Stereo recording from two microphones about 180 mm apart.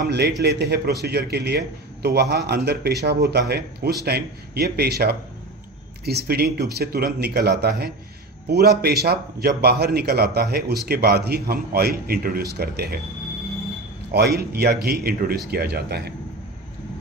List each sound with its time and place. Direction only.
0.4 s a man's voice: 65° right (ahead or behind)
14.1 s a man's voice: 65° right (ahead or behind)